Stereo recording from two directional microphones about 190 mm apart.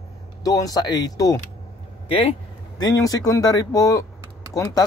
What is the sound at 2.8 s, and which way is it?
Speech, 20° left (ahead or behind).